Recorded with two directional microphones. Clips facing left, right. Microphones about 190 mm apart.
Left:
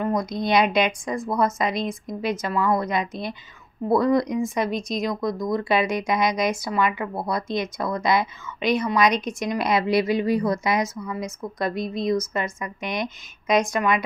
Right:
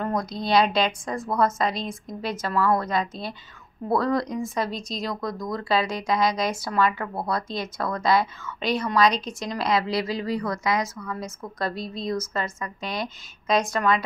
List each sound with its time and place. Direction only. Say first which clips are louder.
0.0 s speech: left 3 dB; 10° left (ahead or behind)